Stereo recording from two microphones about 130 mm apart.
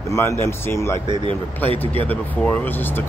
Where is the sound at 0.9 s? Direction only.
40° right (ahead or behind).